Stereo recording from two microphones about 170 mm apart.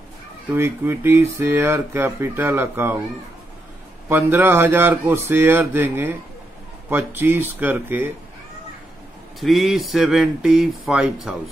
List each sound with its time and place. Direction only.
0.5 s speech: 15° right (ahead or behind)
4.1 s speech: 15° right (ahead or behind)
9.4 s speech: centre (ahead or behind)